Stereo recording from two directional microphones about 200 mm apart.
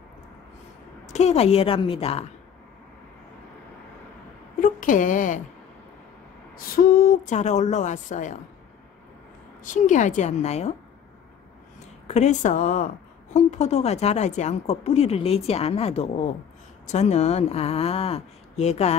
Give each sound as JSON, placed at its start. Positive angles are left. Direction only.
{"t": 1.0, "sound": "a woman's voice", "side_deg": 35}
{"t": 4.6, "sound": "speech", "side_deg": 40}
{"t": 6.5, "sound": "speech", "side_deg": 45}
{"t": 9.6, "sound": "speech", "side_deg": 40}
{"t": 12.1, "sound": "speech", "side_deg": 35}